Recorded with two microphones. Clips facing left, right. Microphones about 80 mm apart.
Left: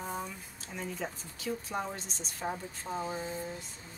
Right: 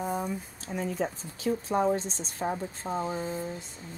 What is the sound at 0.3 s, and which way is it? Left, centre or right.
Speech, right.